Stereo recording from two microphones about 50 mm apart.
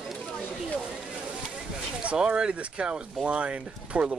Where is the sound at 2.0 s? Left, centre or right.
Right.